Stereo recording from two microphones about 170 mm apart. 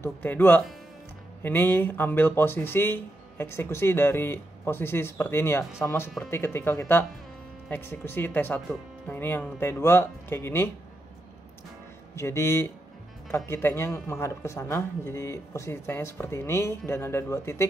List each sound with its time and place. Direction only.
0.0 s speech: 10° left (ahead or behind)
12.2 s speech: 15° left (ahead or behind)